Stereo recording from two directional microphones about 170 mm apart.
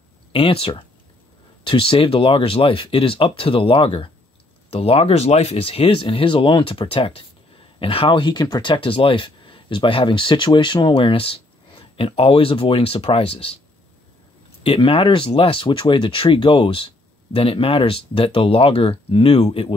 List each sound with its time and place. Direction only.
0.3 s speech: 30° left (ahead or behind)
14.6 s speech: 30° left (ahead or behind)